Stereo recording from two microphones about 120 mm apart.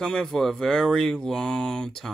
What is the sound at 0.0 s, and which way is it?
Speech, 5° left (ahead or behind).